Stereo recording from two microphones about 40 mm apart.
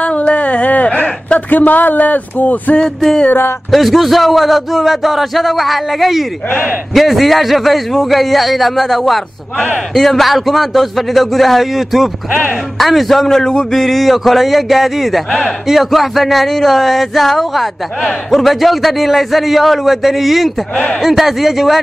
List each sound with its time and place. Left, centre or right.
0.0 s a sound: left
1.5 s speech: left
3.7 s speech: centre
12.3 s speech: left
12.7 s a man's voice: centre
13.7 s speech: centre
20.7 s speech: left
21.0 s speech: centre